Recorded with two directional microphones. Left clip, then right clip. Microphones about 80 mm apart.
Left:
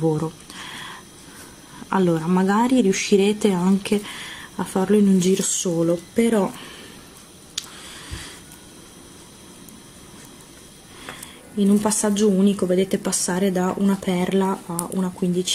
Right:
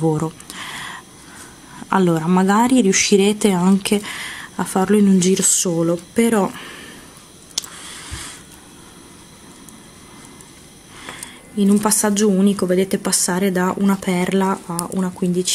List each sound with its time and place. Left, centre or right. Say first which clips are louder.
0.0 s a sound: right 2 dB; centre
1.9 s speech: right 3 dB; centre
11.1 s speech: right 3 dB; right